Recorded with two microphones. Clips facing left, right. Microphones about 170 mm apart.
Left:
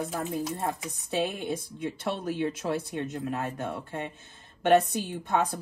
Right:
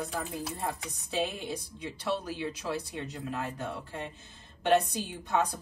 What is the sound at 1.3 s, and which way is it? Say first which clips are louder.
A woman's voice: left 5 dB; 55° left (ahead or behind).